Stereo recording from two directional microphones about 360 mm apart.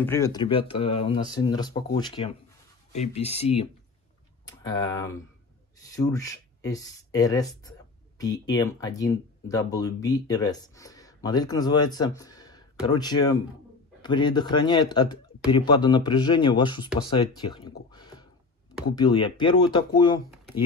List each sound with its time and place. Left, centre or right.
0.0 s speech: centre